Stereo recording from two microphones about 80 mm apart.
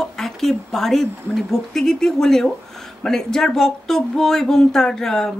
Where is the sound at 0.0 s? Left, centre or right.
Centre.